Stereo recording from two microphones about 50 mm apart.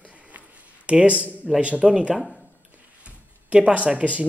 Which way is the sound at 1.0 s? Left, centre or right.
Right.